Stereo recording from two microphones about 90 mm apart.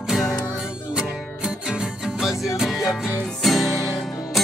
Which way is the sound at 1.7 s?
5° right (ahead or behind).